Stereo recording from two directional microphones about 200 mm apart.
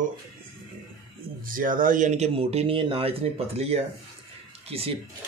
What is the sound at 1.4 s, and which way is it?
Speech, 45° right (ahead or behind).